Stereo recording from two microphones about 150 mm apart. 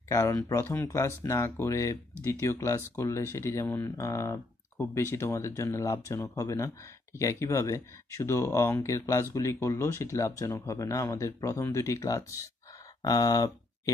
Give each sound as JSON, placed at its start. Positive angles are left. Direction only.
{"t": 0.1, "sound": "speech", "side_deg": 20}
{"t": 2.1, "sound": "speech", "side_deg": -20}
{"t": 2.4, "sound": "speech", "side_deg": 15}